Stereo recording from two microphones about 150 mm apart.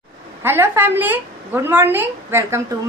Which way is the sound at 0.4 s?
15° right (ahead or behind).